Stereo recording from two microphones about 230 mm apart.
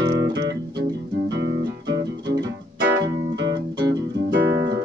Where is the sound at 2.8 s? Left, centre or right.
Right.